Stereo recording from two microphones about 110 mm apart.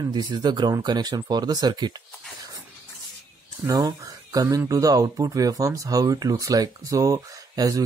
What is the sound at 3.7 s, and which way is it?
Speech, 35° right (ahead or behind).